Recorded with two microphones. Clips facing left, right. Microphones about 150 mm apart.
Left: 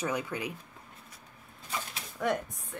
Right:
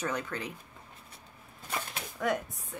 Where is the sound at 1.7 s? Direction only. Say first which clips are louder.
Right 1 dB; 55° right (ahead or behind).